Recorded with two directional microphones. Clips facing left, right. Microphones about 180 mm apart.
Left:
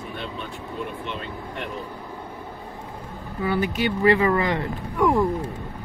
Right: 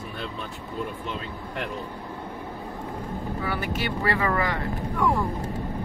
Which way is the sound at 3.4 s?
20° left (ahead or behind).